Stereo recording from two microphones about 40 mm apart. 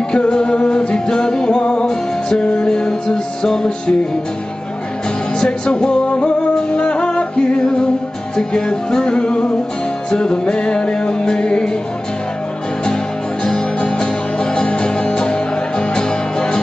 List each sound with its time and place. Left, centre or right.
0.1 s music: centre
5.4 s music: centre
13.4 s music: centre